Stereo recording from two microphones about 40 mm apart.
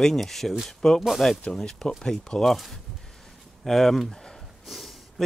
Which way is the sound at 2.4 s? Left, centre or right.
Centre.